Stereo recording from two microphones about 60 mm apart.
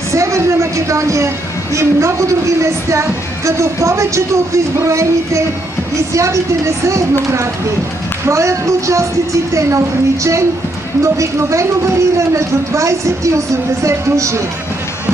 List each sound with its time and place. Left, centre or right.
0.1 s a woman's voice: right
6.9 s speech: right